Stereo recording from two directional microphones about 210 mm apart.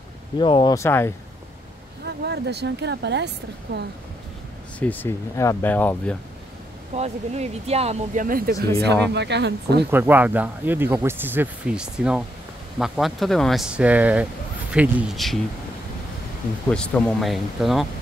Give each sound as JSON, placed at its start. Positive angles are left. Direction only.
{"t": 0.4, "sound": "speech", "side_deg": 25}
{"t": 0.7, "sound": "speech", "side_deg": 10}
{"t": 2.0, "sound": "speech", "side_deg": -50}
{"t": 4.7, "sound": "speech", "side_deg": 10}
{"t": 6.9, "sound": "speech", "side_deg": -30}
{"t": 9.1, "sound": "speech", "side_deg": -55}
{"t": 9.8, "sound": "speech", "side_deg": -10}
{"t": 16.7, "sound": "speech", "side_deg": 5}